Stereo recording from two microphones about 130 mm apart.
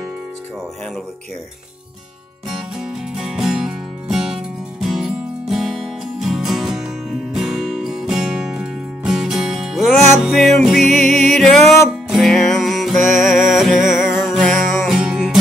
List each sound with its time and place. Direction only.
2.5 s music: 5° right (ahead or behind)
9.9 s music: 60° right (ahead or behind)
10.2 s music: 5° left (ahead or behind)
11.0 s music: 65° right (ahead or behind)
11.3 s music: centre (ahead or behind)
13.0 s music: 70° right (ahead or behind)
13.3 s music: 5° right (ahead or behind)